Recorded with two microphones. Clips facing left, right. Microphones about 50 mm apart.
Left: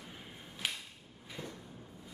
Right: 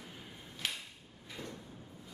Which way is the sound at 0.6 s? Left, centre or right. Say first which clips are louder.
Left 1 dB; centre.